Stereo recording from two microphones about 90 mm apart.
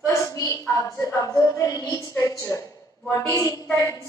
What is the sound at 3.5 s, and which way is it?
Speech, 40° left (ahead or behind).